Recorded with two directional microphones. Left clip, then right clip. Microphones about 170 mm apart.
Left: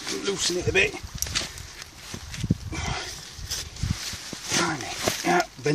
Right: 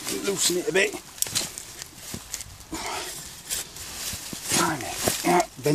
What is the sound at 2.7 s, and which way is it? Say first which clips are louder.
Dog: right 3 dB; 20° right (ahead or behind).